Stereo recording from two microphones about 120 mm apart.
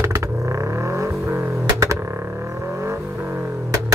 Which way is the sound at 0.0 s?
20° right (ahead or behind).